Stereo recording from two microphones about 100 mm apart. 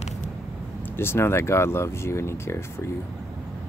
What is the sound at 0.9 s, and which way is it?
Speech, 25° left (ahead or behind).